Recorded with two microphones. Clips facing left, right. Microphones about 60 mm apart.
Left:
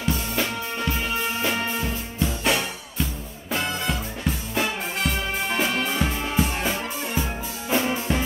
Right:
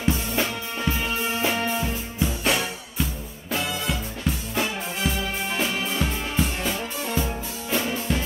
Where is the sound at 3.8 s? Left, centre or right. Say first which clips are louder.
Left 1 dB; centre.